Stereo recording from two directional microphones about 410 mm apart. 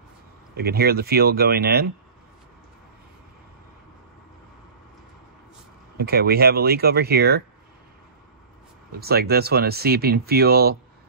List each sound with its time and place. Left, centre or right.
0.6 s speech: right
5.9 s speech: right
9.0 s speech: right